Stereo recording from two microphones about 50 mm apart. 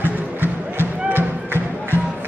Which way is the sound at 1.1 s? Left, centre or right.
Right.